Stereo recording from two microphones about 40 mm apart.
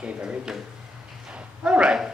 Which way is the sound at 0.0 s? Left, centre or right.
Right.